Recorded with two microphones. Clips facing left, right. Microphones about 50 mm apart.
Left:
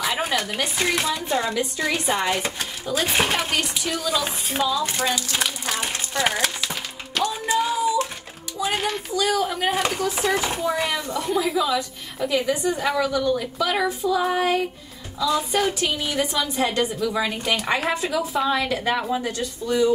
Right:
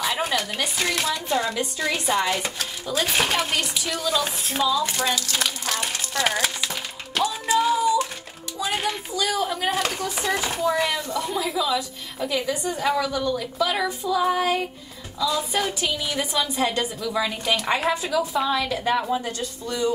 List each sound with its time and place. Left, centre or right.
0.0 s speech: centre
7.4 s a sound: centre
8.7 s speech: centre
15.1 s speech: centre
15.5 s speech: centre
15.9 s speech: centre
16.2 s speech: centre
18.2 s speech: centre